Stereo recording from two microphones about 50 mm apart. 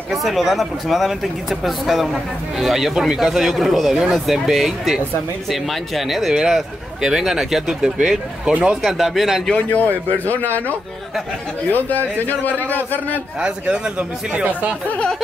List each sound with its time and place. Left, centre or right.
0.1 s speech: centre
8.8 s speech: centre
9.5 s a man's voice: left
11.7 s a man's voice: left
13.4 s speech: right